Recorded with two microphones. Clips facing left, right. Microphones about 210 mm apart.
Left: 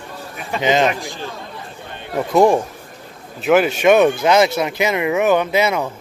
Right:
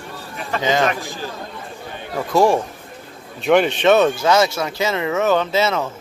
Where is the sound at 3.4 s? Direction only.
5° left (ahead or behind).